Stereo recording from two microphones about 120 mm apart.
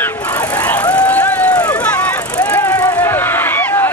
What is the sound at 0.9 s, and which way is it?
Run, 10° left (ahead or behind).